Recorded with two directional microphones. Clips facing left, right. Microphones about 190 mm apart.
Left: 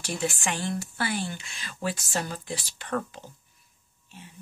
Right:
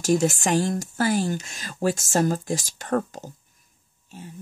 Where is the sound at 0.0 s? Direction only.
40° right (ahead or behind).